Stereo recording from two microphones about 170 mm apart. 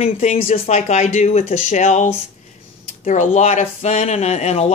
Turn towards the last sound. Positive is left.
turn(degrees=40)  # may be behind; listen again after turning